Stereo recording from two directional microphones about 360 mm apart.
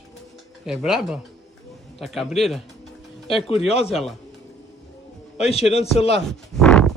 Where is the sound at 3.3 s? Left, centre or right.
Centre.